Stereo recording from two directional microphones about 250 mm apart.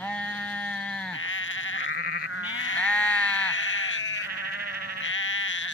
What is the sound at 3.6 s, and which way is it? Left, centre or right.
Sheep, left.